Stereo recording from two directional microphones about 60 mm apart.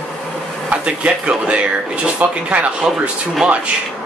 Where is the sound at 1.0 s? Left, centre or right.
Right.